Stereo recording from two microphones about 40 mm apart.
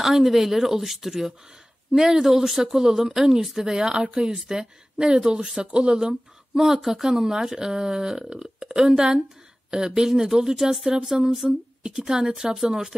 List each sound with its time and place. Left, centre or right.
0.0 s speech: centre
6.5 s speech: centre